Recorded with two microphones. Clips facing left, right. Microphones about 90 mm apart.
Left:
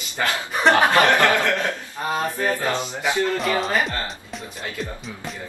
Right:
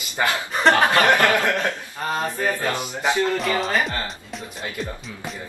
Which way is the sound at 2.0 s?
5° left (ahead or behind).